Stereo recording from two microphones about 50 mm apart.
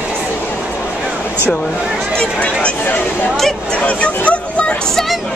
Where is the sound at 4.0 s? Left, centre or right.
Left.